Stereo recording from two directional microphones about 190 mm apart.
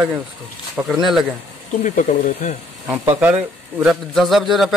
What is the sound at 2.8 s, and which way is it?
Speech, 10° right (ahead or behind).